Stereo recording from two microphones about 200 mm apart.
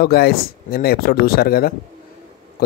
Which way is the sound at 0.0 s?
50° left (ahead or behind).